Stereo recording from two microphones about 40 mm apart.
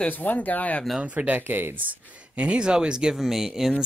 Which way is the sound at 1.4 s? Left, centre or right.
Right.